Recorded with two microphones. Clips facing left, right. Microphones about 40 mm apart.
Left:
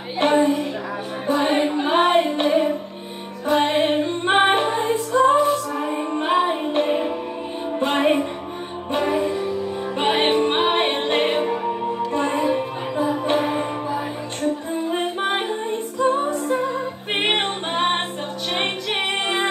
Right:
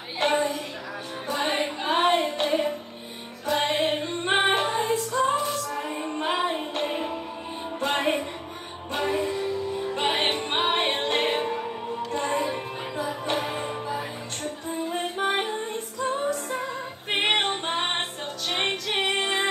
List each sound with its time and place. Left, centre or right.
0.3 s a sound: centre
1.3 s chant: centre
2.1 s music: left
2.4 s music: centre
4.3 s music: left
12.4 s music: centre
14.9 s music: left; by 19.0 s centre
19.0 s music: left